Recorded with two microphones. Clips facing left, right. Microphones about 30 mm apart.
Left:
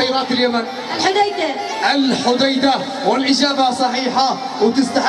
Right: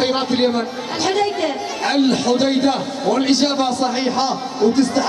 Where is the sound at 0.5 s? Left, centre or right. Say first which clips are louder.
Left 2 dB; left.